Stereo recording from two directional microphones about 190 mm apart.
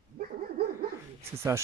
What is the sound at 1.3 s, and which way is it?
Speech, 15° right (ahead or behind).